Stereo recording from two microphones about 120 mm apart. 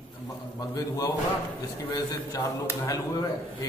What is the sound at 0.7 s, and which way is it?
A man's voice, 30° left (ahead or behind).